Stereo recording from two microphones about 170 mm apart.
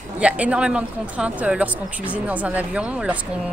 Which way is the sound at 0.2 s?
5° right (ahead or behind).